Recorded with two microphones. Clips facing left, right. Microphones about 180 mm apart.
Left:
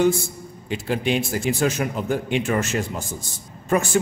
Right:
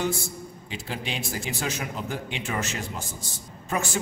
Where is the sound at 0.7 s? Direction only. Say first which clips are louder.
Left 11 dB; 55° left (ahead or behind).